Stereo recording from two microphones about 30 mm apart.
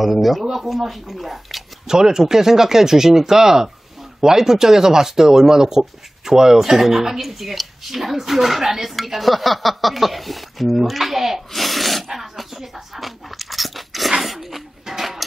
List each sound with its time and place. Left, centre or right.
0.0 s speech: centre
1.9 s speech: centre
11.5 s a sound: centre